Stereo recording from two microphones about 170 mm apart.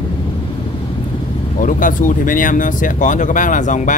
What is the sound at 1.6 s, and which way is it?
Speech, 50° left (ahead or behind).